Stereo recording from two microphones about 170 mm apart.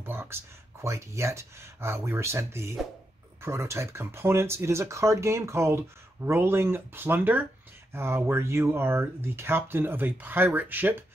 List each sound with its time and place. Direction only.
0.0 s speech: 15° right (ahead or behind)